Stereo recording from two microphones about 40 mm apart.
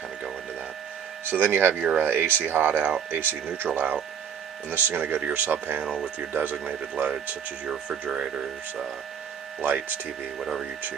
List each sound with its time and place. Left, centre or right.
1.2 s speech: right
5.9 s speech: right
6.3 s speech: right
8.1 s speech: right
9.7 s speech: right